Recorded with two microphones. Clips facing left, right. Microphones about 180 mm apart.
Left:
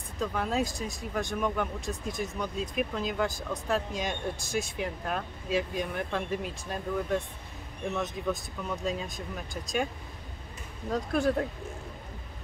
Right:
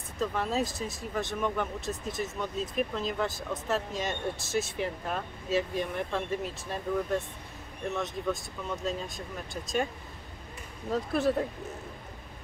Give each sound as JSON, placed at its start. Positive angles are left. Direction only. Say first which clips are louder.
{"t": 0.2, "sound": "speech", "louder": "even", "side_deg": 0}
{"t": 10.9, "sound": "speech", "louder": "even", "side_deg": -5}